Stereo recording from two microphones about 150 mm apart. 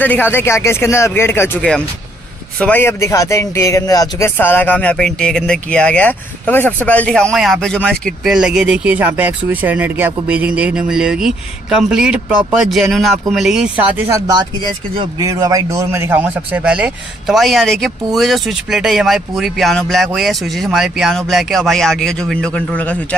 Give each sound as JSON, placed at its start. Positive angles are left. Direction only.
{"t": 0.0, "sound": "speech", "side_deg": 10}
{"t": 4.4, "sound": "speech", "side_deg": 15}
{"t": 14.2, "sound": "speech", "side_deg": -25}